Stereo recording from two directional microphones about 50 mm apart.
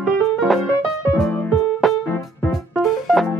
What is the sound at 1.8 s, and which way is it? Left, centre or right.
Music, centre.